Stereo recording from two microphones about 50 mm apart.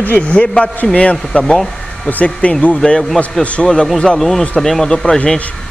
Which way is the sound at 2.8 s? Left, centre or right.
Centre.